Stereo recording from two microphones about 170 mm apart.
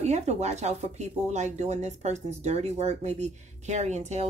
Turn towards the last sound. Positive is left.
turn(degrees=-40)  # may be behind; listen again after turning